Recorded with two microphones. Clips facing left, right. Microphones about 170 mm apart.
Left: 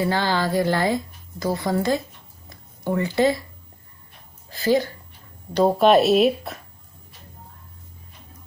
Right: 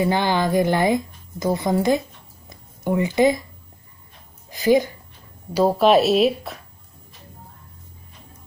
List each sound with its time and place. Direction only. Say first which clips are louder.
0.0 s speech: right 2 dB; 20° right (ahead or behind)
2.5 s a sound: right 2 dB; 20° right (ahead or behind)
4.5 s speech: right 3 dB; 15° right (ahead or behind)
5.5 s speech: even; centre (ahead or behind)